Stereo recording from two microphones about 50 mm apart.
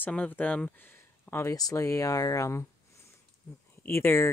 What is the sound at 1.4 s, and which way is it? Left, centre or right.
Speech, left.